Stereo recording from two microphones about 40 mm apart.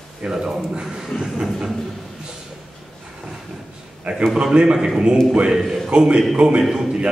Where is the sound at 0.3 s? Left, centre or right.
Centre.